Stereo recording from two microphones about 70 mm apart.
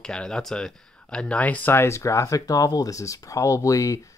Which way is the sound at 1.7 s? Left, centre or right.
Left.